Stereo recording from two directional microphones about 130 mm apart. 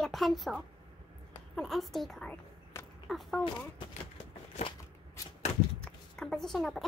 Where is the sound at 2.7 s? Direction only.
20° left (ahead or behind).